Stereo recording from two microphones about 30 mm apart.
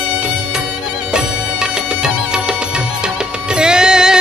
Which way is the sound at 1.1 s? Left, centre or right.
Right.